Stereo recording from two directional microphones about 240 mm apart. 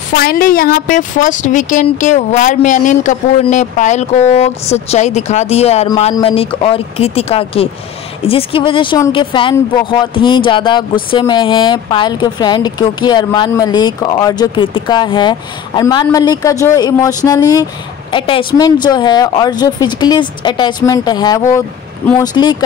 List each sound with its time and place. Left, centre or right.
0.1 s a woman's voice: left; by 22.6 s centre